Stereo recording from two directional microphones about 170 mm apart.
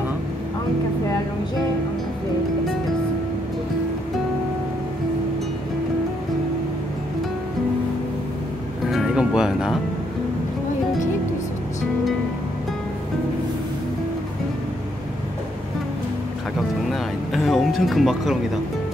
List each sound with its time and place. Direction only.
8.9 s music: 5° right (ahead or behind)
17.3 s music: centre (ahead or behind)